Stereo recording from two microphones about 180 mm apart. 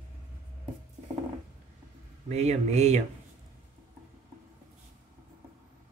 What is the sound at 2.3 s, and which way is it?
Speech, 40° right (ahead or behind).